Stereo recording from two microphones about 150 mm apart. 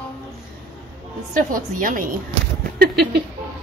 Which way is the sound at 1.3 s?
65° right (ahead or behind).